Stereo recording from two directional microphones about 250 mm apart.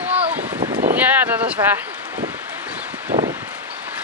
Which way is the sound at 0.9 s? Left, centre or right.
Centre.